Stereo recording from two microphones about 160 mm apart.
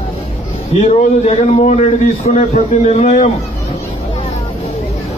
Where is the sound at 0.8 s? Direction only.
40° left (ahead or behind).